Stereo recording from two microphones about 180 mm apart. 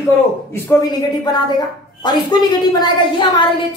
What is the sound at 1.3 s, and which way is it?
Speech, 25° left (ahead or behind).